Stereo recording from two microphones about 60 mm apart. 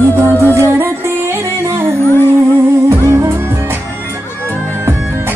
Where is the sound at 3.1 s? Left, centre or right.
Right.